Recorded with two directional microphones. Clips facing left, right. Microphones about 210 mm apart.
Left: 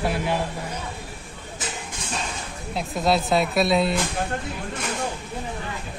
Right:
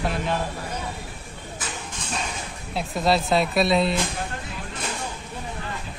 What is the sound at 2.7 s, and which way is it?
Speech, centre (ahead or behind).